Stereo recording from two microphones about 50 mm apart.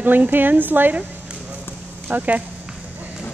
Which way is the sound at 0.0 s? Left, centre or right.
Right.